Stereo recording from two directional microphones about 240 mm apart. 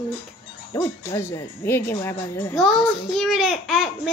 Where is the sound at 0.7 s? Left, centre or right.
Centre.